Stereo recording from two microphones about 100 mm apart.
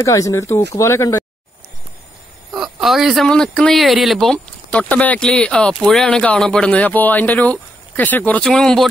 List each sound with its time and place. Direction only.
0.0 s speech: 30° left (ahead or behind)
2.5 s speech: 5° right (ahead or behind); by 8.4 s 15° left (ahead or behind)
8.4 s speech: 5° left (ahead or behind)